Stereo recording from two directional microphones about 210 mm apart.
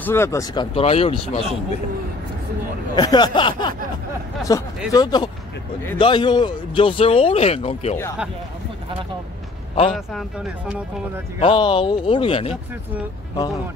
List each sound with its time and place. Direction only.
0.0 s speech: 10° left (ahead or behind); by 1.4 s 30° left (ahead or behind)
3.0 s speech: 20° left (ahead or behind)
9.9 s speech: centre (ahead or behind)
11.3 s speech: 25° left (ahead or behind)